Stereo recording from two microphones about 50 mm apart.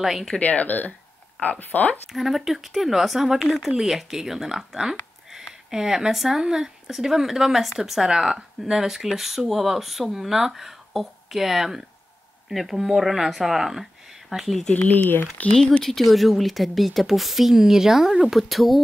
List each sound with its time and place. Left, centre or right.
0.0 s a woman's voice: centre
0.4 s speech: left
2.1 s a woman's voice: centre
3.4 s a woman's voice: centre
3.7 s a woman's voice: centre
14.7 s speech: left
15.8 s a woman's voice: centre